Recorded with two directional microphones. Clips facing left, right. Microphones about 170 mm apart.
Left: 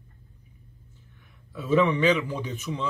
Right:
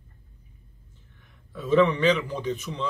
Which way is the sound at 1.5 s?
10° left (ahead or behind).